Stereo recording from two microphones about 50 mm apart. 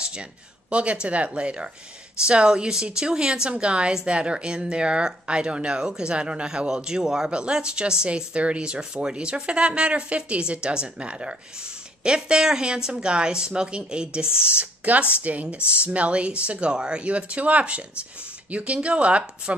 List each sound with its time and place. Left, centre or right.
0.0 s a woman's voice: centre